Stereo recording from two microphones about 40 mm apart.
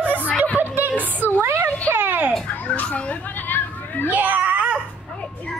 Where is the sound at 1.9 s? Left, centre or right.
Right.